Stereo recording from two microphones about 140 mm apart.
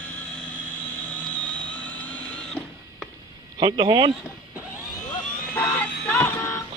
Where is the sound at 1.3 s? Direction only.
10° left (ahead or behind).